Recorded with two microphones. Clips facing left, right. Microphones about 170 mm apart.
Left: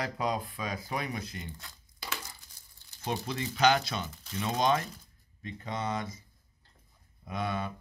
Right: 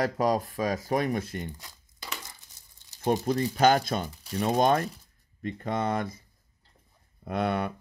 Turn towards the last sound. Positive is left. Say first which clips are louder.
# right 6 dB
turn(degrees=-65)  # may be behind; listen again after turning